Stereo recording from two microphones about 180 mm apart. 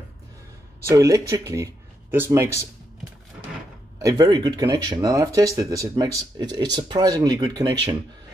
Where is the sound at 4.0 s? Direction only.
20° right (ahead or behind).